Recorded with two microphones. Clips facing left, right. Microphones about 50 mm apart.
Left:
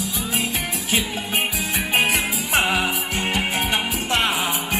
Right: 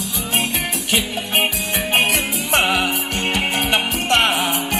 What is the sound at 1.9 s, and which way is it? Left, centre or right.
Music, right.